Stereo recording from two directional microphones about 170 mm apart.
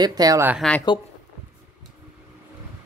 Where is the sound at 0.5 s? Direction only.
5° left (ahead or behind).